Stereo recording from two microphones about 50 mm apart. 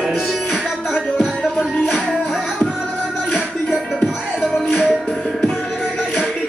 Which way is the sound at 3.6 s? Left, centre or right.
Centre.